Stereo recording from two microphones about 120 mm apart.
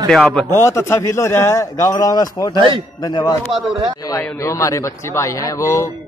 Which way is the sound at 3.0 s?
35° left (ahead or behind).